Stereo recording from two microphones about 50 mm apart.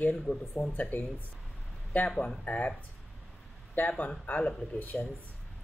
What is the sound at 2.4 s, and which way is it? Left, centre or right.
Speech, left.